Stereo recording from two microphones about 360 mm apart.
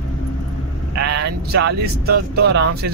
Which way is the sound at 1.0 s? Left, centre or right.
Right.